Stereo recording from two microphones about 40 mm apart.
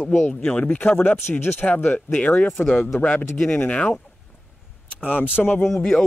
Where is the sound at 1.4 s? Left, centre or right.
Left.